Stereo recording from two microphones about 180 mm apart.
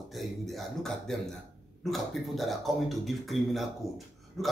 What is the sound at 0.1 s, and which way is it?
A man's voice, centre (ahead or behind).